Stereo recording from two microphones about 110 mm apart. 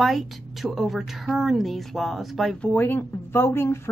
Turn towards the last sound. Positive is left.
turn(degrees=25)  # may be behind; listen again after turning